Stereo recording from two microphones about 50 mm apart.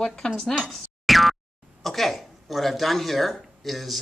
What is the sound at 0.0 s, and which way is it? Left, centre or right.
Speech, centre.